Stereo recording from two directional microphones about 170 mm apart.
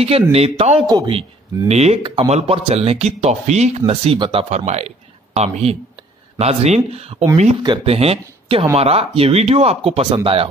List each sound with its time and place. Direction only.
0.3 s a man's voice: 35° right (ahead or behind)
1.7 s speech: 40° right (ahead or behind)